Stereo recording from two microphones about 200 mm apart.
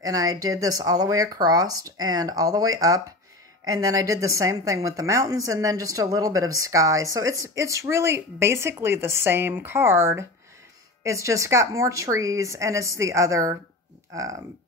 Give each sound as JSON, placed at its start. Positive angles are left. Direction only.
{"t": 0.0, "sound": "a woman's voice", "side_deg": -15}